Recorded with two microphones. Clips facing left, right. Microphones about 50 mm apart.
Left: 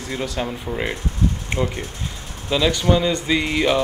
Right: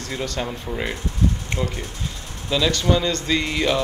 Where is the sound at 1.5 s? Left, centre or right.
Left.